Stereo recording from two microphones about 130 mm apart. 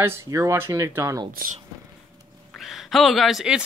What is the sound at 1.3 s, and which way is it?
Speech, 90° right.